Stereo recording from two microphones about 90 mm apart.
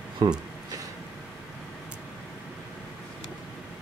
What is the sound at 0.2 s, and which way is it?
Speech, 55° right (ahead or behind).